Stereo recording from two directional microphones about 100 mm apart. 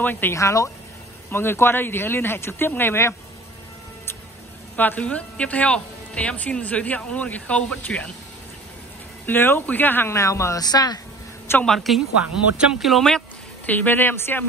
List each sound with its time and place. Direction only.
0.0 s speech: 20° left (ahead or behind)
4.7 s a woman's voice: 15° left (ahead or behind)
9.2 s speech: 20° left (ahead or behind); by 11.0 s 40° left (ahead or behind)
11.6 s speech: centre (ahead or behind)
13.7 s speech: 20° left (ahead or behind)